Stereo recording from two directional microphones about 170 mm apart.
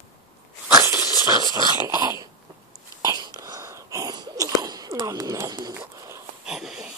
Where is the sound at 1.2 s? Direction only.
20° right (ahead or behind).